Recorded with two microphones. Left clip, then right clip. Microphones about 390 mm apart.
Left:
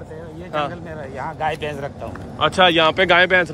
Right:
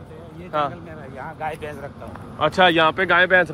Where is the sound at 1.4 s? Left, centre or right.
Centre.